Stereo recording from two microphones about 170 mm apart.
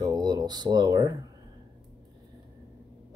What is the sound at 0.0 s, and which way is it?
Speech, 25° right (ahead or behind).